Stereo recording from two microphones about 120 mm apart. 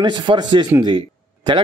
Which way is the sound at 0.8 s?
40° right (ahead or behind).